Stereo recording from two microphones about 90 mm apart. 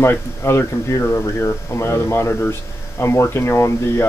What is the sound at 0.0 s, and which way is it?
Speech, 30° left (ahead or behind).